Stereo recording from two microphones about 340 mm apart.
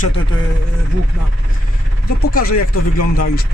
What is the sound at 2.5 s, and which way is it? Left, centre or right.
Speech, left.